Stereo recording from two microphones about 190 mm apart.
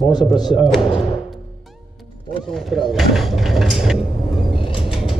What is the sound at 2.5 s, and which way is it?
Speech, centre (ahead or behind).